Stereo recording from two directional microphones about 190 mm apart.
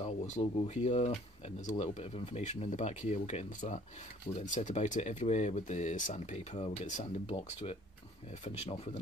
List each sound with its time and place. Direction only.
0.0 s speech: 35° left (ahead or behind)